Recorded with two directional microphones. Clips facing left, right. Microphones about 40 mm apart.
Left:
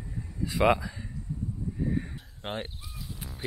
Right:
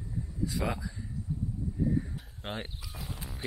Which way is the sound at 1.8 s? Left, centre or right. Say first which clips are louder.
Right 1 dB; left.